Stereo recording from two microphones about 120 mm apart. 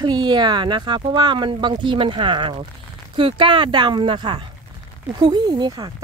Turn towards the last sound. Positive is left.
turn(degrees=-35)  # may be behind; listen again after turning